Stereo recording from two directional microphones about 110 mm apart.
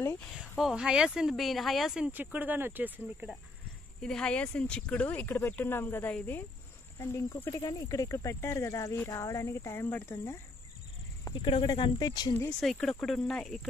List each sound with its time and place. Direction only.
0.3 s speech: centre (ahead or behind)
4.0 s speech: 5° left (ahead or behind); by 10.4 s 25° left (ahead or behind)
11.4 s speech: 45° left (ahead or behind); by 12.4 s 30° left (ahead or behind)
12.4 s speech: 10° left (ahead or behind)